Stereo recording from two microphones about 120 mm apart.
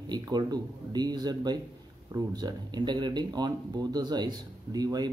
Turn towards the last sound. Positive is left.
turn(degrees=-35)  # may be behind; listen again after turning